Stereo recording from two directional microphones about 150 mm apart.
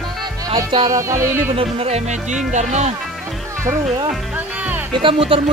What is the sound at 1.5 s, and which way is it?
Speech, 40° right (ahead or behind).